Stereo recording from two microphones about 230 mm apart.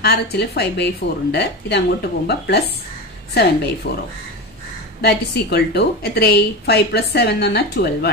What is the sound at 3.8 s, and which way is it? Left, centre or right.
Speech, left.